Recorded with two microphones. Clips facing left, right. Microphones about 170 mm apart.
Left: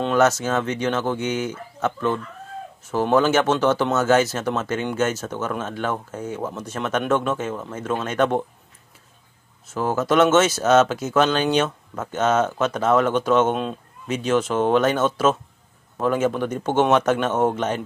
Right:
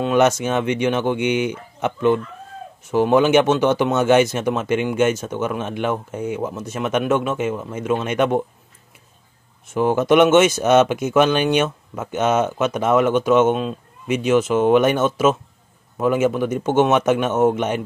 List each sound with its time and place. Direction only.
0.0 s speech: 15° right (ahead or behind)
9.8 s speech: 15° right (ahead or behind)